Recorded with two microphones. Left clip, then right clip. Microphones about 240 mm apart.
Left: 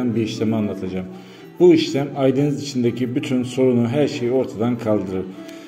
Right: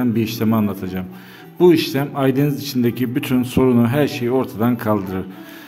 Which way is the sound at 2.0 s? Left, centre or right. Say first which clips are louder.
Even; right.